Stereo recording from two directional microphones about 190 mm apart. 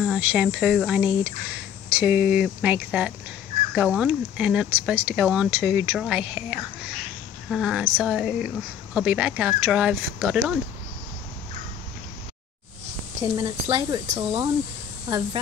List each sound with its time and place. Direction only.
0.0 s speech: 5° right (ahead or behind)
13.4 s speech: 25° right (ahead or behind)